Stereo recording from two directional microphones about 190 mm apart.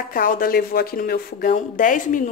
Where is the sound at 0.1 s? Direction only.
45° left (ahead or behind).